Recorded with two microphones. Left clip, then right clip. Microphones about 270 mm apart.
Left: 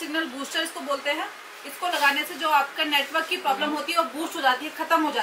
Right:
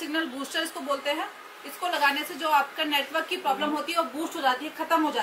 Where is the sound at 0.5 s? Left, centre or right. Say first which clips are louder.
Left 2 dB; centre.